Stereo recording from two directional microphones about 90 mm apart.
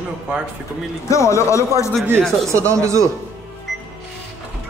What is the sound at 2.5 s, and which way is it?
Speech, 35° right (ahead or behind).